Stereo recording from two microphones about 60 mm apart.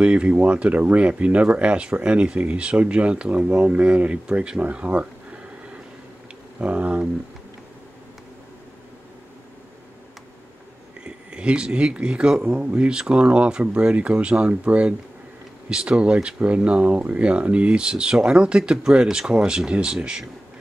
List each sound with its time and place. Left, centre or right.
0.0 s speech: centre
6.6 s speech: right
11.1 s speech: centre